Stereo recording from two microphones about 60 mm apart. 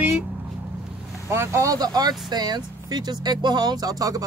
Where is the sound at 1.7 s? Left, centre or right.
Right.